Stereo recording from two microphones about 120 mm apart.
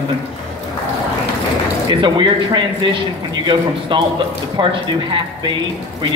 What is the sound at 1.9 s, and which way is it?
A man's voice, 40° right (ahead or behind).